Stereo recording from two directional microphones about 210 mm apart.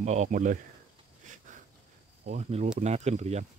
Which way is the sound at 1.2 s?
35° right (ahead or behind).